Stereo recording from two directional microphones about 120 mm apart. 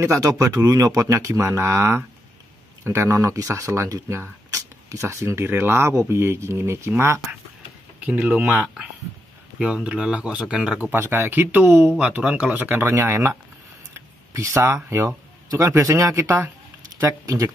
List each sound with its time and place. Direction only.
0.0 s speech: 25° right (ahead or behind)